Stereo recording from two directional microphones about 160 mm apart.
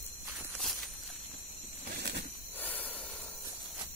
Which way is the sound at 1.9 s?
90° right.